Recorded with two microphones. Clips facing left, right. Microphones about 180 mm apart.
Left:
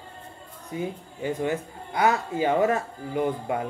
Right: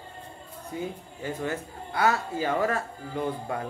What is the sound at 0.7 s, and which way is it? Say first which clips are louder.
Speech: left 3 dB; 20° left (ahead or behind).